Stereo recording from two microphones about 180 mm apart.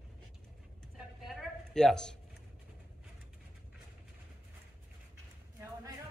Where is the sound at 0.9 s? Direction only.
Centre (ahead or behind).